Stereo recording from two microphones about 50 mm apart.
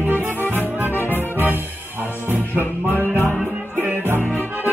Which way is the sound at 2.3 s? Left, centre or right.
Right.